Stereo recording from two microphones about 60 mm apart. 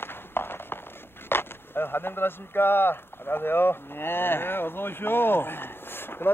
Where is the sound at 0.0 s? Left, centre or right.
Left.